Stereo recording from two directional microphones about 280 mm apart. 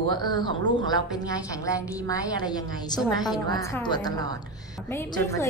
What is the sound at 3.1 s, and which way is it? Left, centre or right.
Speech, centre.